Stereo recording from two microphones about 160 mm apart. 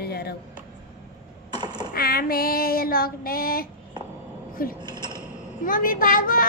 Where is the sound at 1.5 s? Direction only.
25° right (ahead or behind).